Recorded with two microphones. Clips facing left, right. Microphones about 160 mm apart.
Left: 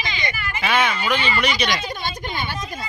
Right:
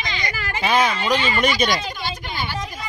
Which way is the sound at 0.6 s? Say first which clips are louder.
Right 2 dB; 35° right (ahead or behind).